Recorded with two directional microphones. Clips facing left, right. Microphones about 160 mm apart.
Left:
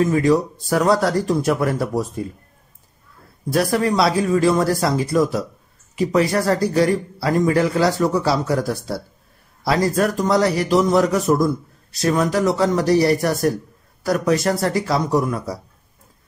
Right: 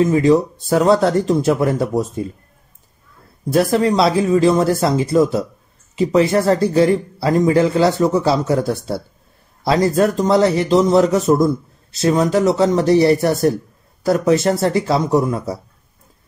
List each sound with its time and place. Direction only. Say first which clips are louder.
0.0 s speech: right 3 dB; 25° right (ahead or behind)
3.5 s speech: right 3 dB; 25° right (ahead or behind)